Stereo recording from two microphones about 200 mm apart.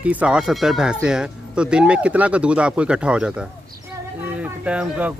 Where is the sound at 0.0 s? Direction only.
5° right (ahead or behind).